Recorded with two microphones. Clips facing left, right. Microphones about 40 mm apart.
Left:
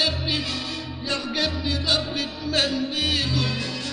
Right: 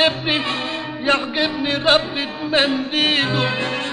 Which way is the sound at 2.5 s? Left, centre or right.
Right.